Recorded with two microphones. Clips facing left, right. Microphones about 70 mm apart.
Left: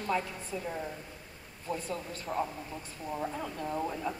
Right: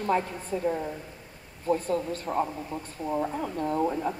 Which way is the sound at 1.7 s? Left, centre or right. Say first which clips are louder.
Right 10 dB; right.